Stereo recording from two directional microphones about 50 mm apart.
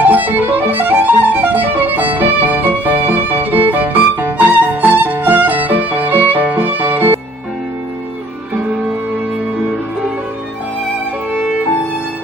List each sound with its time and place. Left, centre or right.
0.0 s music: right
4.8 s violin: right